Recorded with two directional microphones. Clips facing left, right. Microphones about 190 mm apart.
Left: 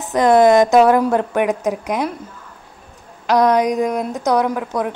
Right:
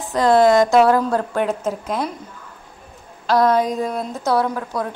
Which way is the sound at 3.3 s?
15° left (ahead or behind).